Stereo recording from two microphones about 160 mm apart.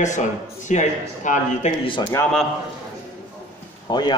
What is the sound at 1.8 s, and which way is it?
Speech, 30° left (ahead or behind).